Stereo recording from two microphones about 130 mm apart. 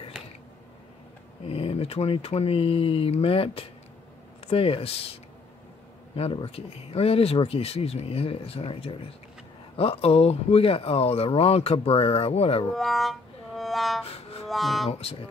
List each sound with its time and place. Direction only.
1.5 s speech: 45° left (ahead or behind)
6.1 s speech: 45° left (ahead or behind)
12.7 s music: centre (ahead or behind)
14.5 s speech: centre (ahead or behind)
14.9 s speech: 50° left (ahead or behind)